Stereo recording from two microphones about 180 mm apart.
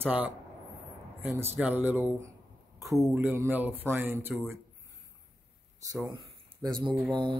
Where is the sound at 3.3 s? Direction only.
10° right (ahead or behind).